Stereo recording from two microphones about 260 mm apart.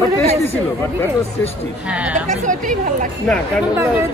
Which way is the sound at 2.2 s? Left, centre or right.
Right.